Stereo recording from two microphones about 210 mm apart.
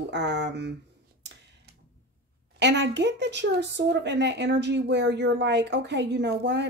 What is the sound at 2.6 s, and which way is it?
Speech, 55° right (ahead or behind).